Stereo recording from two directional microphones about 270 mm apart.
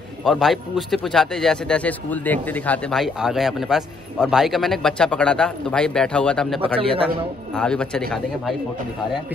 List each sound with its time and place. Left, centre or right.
0.2 s speech: centre
6.6 s speech: centre
7.5 s speech: centre